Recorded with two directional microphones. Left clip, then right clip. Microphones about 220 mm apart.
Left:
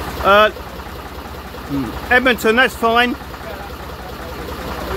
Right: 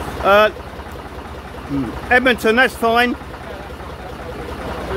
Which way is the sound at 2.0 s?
Centre (ahead or behind).